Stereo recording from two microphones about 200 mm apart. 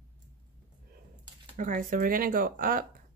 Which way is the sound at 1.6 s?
40° right (ahead or behind).